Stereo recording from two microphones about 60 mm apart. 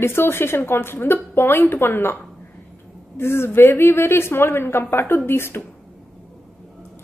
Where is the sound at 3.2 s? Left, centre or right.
Left.